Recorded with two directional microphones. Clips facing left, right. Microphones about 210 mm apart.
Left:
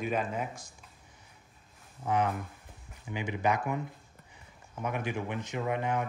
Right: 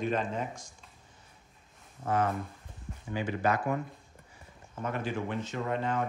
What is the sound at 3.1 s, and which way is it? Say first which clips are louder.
Speech: right 1 dB; 15° left (ahead or behind).